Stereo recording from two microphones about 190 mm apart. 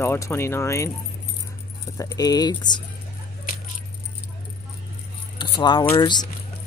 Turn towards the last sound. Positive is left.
turn(degrees=25)  # may be behind; listen again after turning